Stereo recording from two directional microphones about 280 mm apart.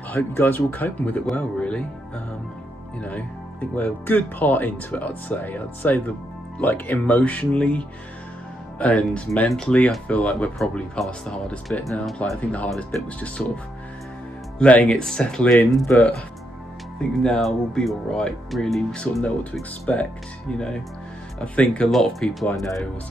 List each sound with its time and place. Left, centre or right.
0.1 s speech: centre
14.6 s speech: centre
17.2 s speech: centre